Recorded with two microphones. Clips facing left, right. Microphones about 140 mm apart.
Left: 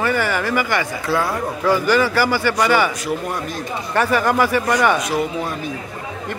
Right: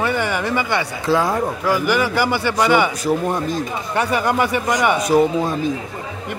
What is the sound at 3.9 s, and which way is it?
Speech, 15° right (ahead or behind).